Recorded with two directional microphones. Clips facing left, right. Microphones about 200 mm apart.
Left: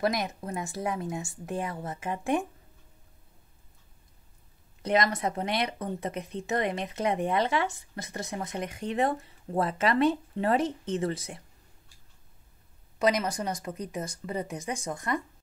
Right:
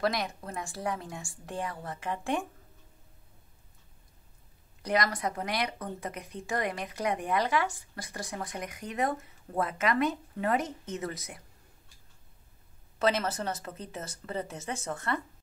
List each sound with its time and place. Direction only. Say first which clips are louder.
0.0 s speech: left 2 dB; 20° left (ahead or behind)
4.8 s speech: left 3 dB; 25° left (ahead or behind)
13.0 s speech: left 2 dB; 15° left (ahead or behind)